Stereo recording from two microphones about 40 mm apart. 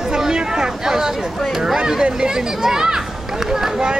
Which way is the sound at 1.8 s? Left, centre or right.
Right.